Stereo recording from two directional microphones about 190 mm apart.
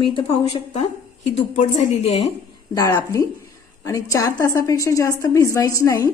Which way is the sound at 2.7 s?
20° left (ahead or behind).